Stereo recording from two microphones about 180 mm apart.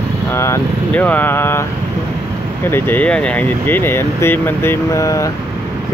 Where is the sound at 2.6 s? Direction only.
10° left (ahead or behind).